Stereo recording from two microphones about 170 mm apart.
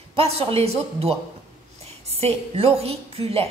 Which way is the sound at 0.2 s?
35° right (ahead or behind).